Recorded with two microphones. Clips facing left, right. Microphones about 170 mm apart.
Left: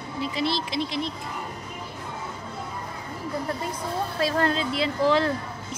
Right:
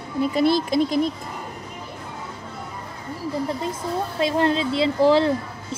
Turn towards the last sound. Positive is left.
turn(degrees=-30)  # may be behind; listen again after turning